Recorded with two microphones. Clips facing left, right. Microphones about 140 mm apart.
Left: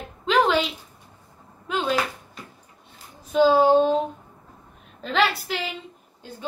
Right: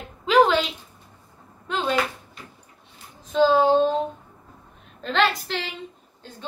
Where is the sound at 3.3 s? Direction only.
10° left (ahead or behind).